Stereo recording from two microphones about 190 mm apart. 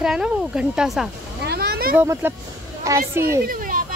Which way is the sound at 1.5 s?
55° right (ahead or behind).